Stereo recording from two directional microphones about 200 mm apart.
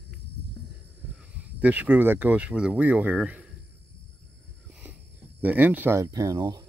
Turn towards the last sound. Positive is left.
turn(degrees=-20)  # may be behind; listen again after turning